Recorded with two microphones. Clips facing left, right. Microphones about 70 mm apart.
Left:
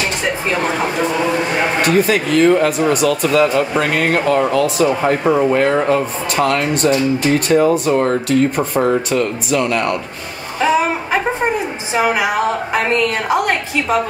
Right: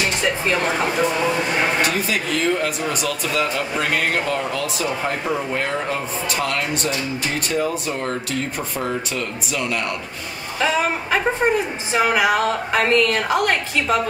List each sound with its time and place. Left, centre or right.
0.2 s a sound: centre
1.8 s speech: left
5.4 s speech: left
5.7 s speech: left
10.6 s a woman's voice: centre